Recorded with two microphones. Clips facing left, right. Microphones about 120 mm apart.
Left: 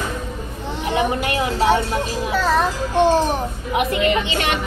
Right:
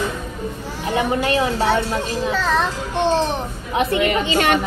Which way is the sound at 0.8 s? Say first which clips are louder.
Right 1 dB; 20° left (ahead or behind).